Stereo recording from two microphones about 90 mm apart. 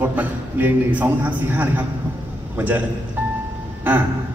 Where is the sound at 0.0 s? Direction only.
20° right (ahead or behind).